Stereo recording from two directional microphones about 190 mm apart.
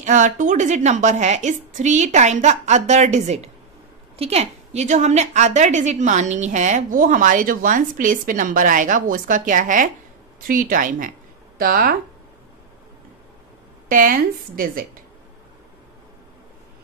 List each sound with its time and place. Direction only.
0.0 s a woman's voice: 40° right (ahead or behind)
13.8 s a woman's voice: 45° right (ahead or behind)